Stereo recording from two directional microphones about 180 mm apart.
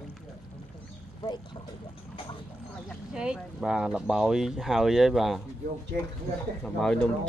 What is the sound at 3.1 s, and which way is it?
Speech, 5° right (ahead or behind).